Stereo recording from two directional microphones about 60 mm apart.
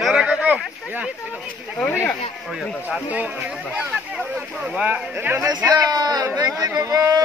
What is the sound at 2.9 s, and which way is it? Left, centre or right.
Speech, right.